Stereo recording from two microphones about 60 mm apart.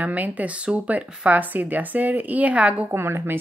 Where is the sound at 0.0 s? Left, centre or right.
Right.